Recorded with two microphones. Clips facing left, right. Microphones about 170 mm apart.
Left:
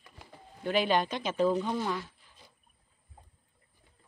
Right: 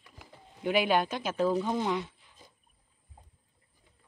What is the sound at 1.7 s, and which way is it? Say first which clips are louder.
Speech: right 2 dB; 20° right (ahead or behind).